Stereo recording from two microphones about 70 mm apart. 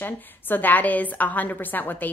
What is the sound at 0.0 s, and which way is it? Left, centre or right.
Speech, left.